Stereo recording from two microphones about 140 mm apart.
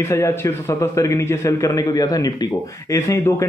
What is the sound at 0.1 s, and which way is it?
A man's voice, 20° left (ahead or behind).